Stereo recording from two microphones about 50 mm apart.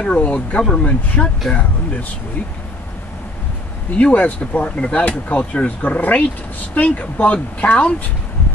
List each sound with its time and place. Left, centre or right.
0.1 s speech: left
0.6 s speech: centre
0.8 s speech: left
3.9 s speech: left